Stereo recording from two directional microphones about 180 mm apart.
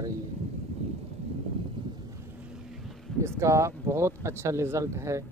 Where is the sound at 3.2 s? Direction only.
15° right (ahead or behind).